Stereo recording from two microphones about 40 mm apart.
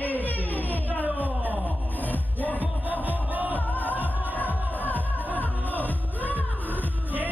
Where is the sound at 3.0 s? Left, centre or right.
Right.